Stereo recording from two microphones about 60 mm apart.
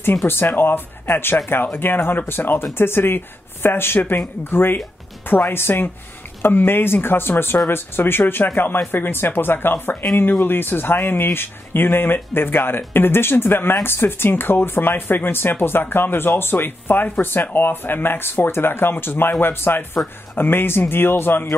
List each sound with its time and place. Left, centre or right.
0.0 s speech: left